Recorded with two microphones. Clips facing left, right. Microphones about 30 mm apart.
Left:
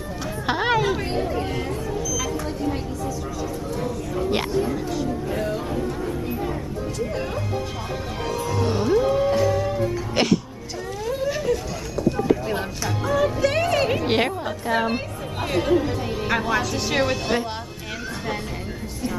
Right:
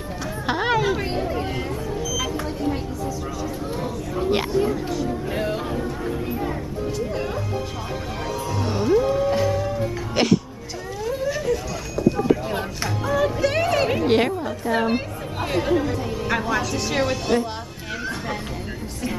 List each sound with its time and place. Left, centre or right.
0.5 s speech: centre
2.0 s a sound: centre
4.3 s speech: centre
5.3 s a sound: right
5.7 s chatter: centre
7.0 s music: centre
9.0 s music: centre
9.3 s music: centre
9.7 s music: centre
11.1 s a sound: centre
13.0 s music: centre
14.0 s a woman's voice: centre